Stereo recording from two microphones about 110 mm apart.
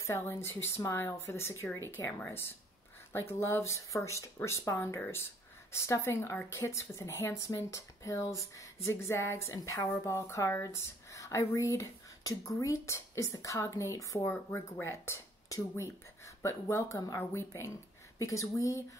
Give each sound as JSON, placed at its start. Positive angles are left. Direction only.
{"t": 0.0, "sound": "speech", "side_deg": 25}